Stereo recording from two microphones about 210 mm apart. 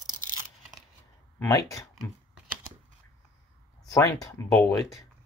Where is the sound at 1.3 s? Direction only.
15° left (ahead or behind).